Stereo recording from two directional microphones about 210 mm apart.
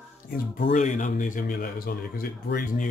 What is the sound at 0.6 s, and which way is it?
Speech, 40° left (ahead or behind).